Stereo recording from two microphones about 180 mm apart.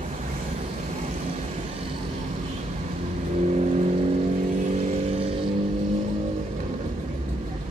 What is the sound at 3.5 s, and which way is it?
Vehicle, 40° right (ahead or behind).